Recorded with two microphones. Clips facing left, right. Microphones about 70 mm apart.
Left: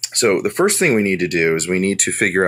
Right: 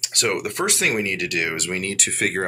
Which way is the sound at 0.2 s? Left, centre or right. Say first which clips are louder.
Left 8 dB; left.